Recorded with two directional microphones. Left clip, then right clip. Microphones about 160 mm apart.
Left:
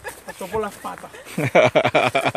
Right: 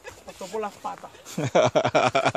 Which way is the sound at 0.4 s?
50° left (ahead or behind).